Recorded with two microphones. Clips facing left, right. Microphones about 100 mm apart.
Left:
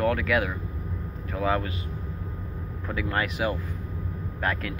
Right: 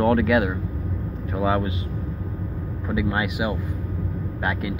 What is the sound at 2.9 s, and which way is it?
Speech, 15° right (ahead or behind).